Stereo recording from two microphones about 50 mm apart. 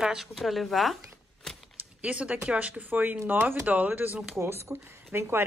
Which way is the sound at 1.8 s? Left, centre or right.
Right.